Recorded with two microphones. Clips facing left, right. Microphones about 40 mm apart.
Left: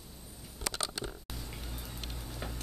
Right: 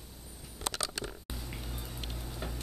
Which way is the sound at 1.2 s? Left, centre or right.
Centre.